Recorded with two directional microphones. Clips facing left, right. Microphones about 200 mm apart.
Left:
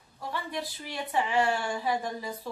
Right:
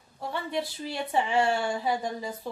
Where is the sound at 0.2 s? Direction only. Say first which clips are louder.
Right 4 dB; 25° right (ahead or behind).